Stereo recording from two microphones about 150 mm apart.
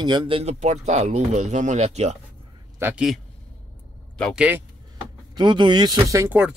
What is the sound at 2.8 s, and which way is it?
Speech, 5° right (ahead or behind).